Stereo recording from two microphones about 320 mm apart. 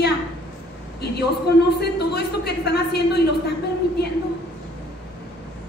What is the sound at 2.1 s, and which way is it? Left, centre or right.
A woman's voice, left.